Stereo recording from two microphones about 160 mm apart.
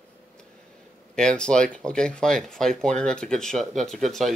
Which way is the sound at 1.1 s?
5° left (ahead or behind).